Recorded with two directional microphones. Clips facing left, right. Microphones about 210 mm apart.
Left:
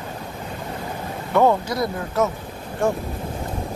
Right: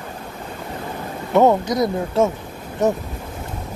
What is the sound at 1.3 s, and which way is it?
Speech, 20° right (ahead or behind).